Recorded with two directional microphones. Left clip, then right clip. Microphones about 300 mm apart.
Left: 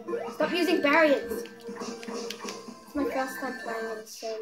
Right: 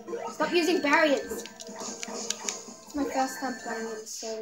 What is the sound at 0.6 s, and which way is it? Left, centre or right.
Speech, centre.